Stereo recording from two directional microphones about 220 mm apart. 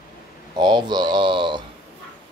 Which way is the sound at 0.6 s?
20° right (ahead or behind).